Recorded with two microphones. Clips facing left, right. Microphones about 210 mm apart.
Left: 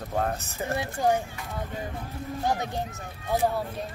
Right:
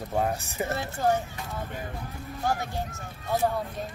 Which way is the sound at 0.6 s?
15° left (ahead or behind).